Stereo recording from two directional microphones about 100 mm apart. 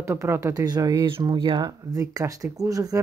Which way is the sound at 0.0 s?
30° right (ahead or behind).